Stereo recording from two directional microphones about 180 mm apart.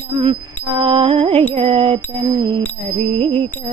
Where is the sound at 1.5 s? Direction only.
35° right (ahead or behind).